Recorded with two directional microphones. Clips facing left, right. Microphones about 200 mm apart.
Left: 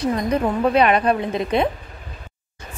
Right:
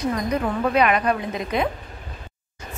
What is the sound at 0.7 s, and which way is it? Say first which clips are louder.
Speech: left 2 dB; 30° left (ahead or behind).